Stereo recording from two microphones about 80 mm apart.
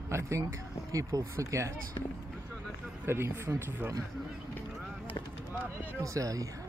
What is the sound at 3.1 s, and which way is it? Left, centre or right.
Speech, right.